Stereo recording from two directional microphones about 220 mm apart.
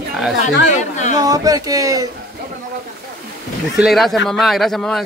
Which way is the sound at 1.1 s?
15° right (ahead or behind).